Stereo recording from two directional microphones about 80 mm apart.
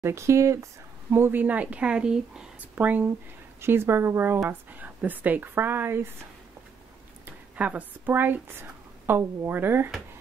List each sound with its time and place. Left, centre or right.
0.0 s speech: right
1.1 s a woman's voice: right; by 2.4 s centre
2.7 s speech: right
7.2 s speech: centre